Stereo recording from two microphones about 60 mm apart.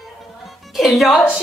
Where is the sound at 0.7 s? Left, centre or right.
Centre.